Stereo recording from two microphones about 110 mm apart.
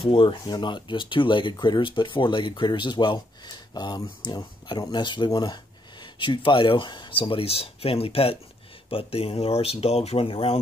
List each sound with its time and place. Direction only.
0.0 s speech: 50° left (ahead or behind)